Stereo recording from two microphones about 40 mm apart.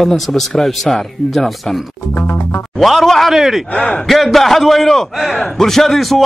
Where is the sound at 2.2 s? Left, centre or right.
Left.